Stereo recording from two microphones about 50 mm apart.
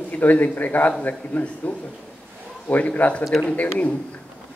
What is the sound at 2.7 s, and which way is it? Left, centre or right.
Speech, left.